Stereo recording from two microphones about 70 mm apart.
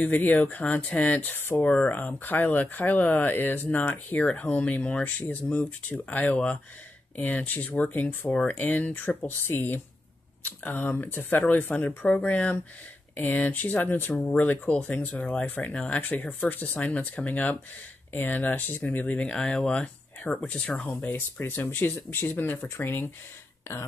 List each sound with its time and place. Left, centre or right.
0.0 s speech: left
21.1 s speech: left